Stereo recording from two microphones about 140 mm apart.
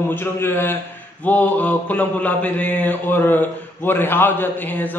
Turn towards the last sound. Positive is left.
turn(degrees=15)  # may be behind; listen again after turning